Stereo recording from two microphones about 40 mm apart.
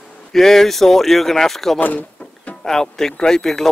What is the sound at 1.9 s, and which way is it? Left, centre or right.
Music, left.